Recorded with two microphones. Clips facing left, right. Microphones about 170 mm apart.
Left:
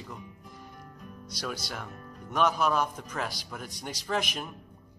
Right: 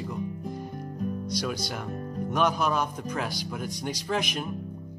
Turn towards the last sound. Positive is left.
turn(degrees=0)  # may be behind; listen again after turning